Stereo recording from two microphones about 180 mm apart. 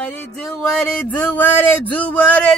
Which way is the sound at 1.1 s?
10° left (ahead or behind).